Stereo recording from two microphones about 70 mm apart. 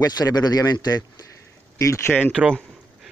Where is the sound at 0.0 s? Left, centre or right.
Left.